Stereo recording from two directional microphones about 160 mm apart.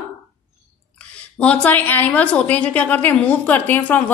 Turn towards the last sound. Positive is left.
turn(degrees=10)  # may be behind; listen again after turning